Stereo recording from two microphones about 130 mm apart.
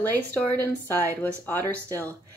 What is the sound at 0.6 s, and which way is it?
Speech, 15° left (ahead or behind).